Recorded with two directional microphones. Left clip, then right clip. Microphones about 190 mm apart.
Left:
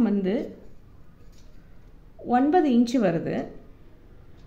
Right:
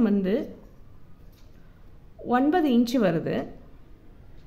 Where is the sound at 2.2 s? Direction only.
35° right (ahead or behind).